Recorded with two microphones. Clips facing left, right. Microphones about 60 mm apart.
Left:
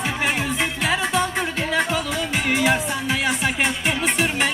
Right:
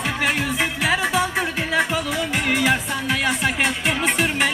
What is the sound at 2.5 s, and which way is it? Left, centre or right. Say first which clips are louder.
Music: left 1 dB; centre.